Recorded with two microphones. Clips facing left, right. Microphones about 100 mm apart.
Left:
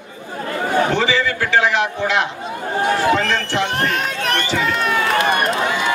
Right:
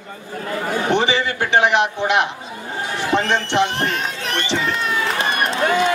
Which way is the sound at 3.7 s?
60° left (ahead or behind).